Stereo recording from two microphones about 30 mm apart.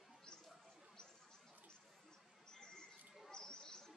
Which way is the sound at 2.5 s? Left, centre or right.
Left.